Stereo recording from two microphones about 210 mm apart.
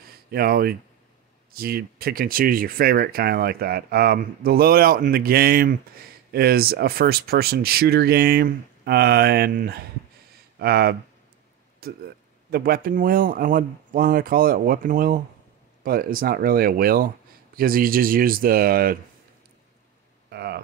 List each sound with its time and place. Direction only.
0.3 s speech: 45° right (ahead or behind)
20.2 s speech: 50° right (ahead or behind)